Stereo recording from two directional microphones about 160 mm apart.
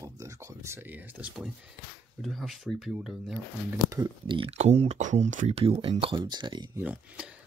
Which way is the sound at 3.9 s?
30° right (ahead or behind).